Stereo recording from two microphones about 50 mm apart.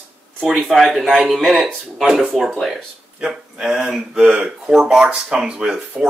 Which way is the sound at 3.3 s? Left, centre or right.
Centre.